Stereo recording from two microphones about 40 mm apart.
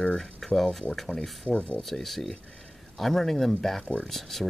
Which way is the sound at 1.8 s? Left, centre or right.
Centre.